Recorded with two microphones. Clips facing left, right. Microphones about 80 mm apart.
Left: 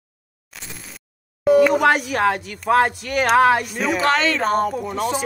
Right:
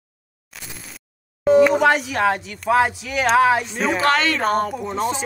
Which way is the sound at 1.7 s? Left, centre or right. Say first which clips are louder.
Even; centre.